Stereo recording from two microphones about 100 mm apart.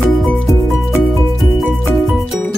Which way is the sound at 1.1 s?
Centre (ahead or behind).